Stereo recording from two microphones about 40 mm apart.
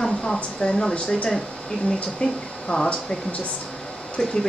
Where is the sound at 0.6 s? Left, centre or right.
Left.